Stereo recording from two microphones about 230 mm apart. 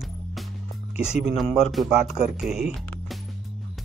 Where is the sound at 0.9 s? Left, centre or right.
Centre.